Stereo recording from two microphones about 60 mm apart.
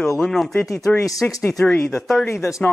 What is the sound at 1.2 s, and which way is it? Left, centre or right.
Speech, left.